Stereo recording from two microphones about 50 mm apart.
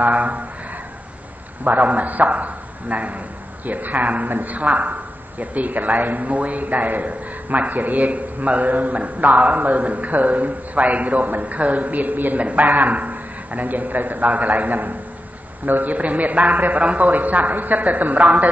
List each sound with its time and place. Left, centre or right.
0.0 s speech: right
1.6 s a man's voice: right